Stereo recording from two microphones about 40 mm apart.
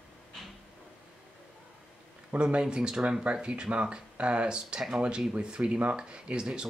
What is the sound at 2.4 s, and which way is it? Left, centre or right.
Speech, right.